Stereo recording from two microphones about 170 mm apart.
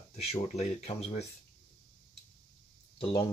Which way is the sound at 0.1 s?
40° left (ahead or behind).